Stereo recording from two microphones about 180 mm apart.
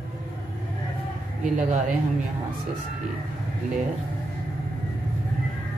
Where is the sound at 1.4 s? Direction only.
40° right (ahead or behind).